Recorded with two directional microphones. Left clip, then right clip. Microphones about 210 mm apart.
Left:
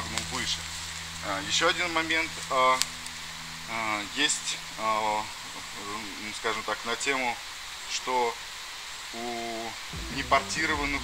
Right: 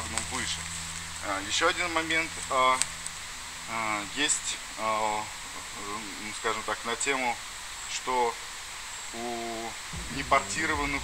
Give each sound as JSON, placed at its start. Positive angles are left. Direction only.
{"t": 0.1, "sound": "a sound", "side_deg": -5}
{"t": 1.2, "sound": "speech", "side_deg": -5}
{"t": 6.4, "sound": "speech", "side_deg": -5}
{"t": 10.3, "sound": "speech", "side_deg": -5}